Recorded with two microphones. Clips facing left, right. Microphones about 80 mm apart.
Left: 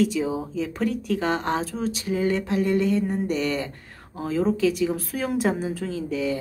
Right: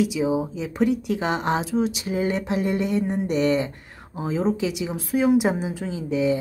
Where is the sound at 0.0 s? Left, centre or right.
Centre.